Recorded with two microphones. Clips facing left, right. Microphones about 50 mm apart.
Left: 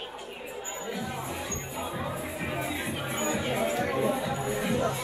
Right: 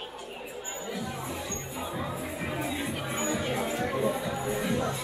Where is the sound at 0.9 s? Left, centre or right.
Centre.